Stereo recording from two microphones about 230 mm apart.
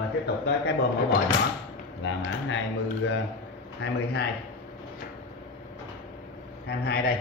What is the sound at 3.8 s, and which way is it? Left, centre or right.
Speech, left.